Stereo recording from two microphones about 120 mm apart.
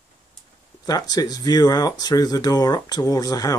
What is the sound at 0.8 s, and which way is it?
Speech, 30° left (ahead or behind).